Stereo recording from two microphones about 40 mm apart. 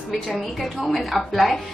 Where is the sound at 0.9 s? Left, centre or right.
Centre.